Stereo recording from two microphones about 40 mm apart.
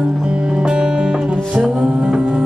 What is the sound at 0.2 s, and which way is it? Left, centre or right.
Music, right.